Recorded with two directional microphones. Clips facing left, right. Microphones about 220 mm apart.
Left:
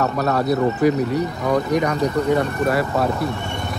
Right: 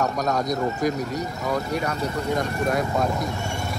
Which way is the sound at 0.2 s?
5° left (ahead or behind).